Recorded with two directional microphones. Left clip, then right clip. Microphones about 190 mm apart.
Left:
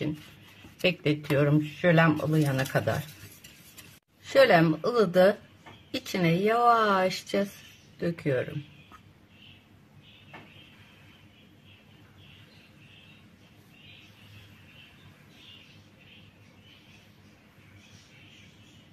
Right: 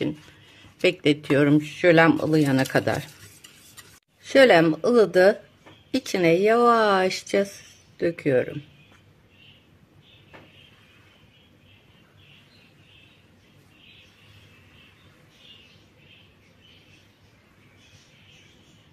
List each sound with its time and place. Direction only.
0.8 s speech: 40° right (ahead or behind)
4.2 s speech: 35° right (ahead or behind)